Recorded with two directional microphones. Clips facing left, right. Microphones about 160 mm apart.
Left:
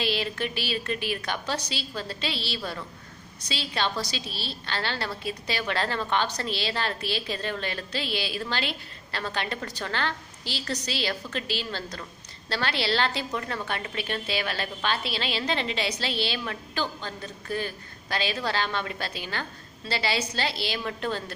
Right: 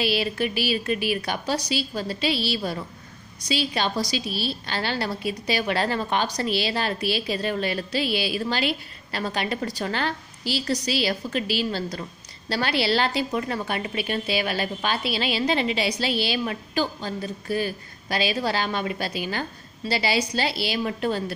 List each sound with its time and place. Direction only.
0.0 s a woman's voice: 10° right (ahead or behind)